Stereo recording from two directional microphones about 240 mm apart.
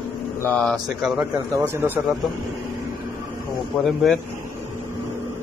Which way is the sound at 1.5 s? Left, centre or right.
Centre.